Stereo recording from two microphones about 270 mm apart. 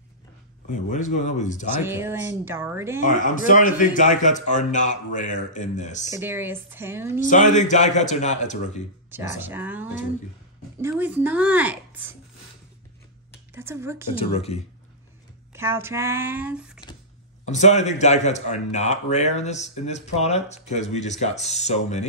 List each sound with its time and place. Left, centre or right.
0.7 s a man's voice: left
1.8 s speech: centre
3.0 s a man's voice: left
6.0 s speech: centre
7.2 s a man's voice: left
9.4 s speech: centre
13.6 s speech: centre
14.1 s a man's voice: left
15.5 s speech: centre
17.5 s a man's voice: left